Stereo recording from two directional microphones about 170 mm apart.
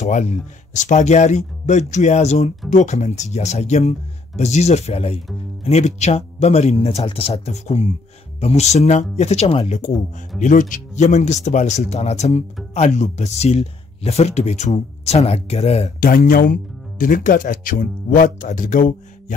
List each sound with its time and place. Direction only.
0.0 s speech: 45° left (ahead or behind)
16.0 s speech: 55° left (ahead or behind)